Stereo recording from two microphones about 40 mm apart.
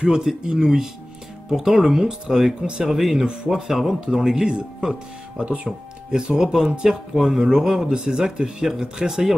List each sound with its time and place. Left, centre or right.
0.0 s speech: centre
5.4 s speech: right
6.1 s speech: centre